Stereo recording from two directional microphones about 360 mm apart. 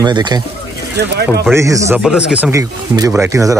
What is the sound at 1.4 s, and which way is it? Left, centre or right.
Speech, centre.